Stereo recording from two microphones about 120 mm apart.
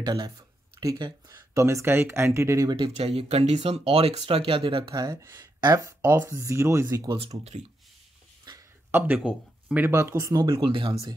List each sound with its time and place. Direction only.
0.0 s speech: 35° right (ahead or behind)
2.9 s speech: 55° right (ahead or behind); by 5.2 s 35° right (ahead or behind)
5.9 s speech: 20° right (ahead or behind)
7.1 s speech: 55° right (ahead or behind)
8.9 s speech: 15° right (ahead or behind)
9.8 s speech: 20° right (ahead or behind)
10.5 s speech: 45° right (ahead or behind)